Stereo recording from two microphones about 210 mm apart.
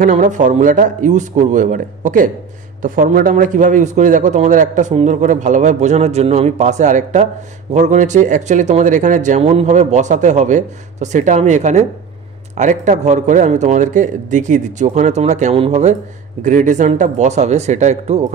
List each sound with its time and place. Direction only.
0.0 s a man's voice: 35° right (ahead or behind)